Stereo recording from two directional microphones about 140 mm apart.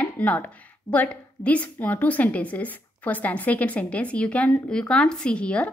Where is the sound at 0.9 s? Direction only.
10° left (ahead or behind).